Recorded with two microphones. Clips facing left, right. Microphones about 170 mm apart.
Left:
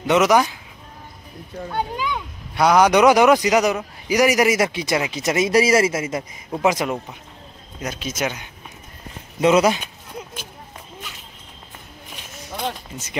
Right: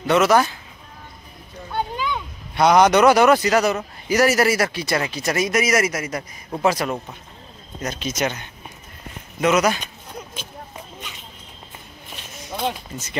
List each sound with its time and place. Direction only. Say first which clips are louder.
0.0 s a man's voice: even; 15° left (ahead or behind)
1.7 s a sound: even; 10° left (ahead or behind)
2.9 s a man's voice: left 1 dB; 15° left (ahead or behind)
9.4 s speech: left 3 dB; 25° left (ahead or behind)
12.5 s speech: right 2 dB; 5° right (ahead or behind)